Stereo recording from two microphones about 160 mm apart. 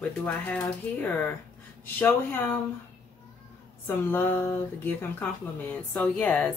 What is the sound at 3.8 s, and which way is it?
Speech, 10° left (ahead or behind).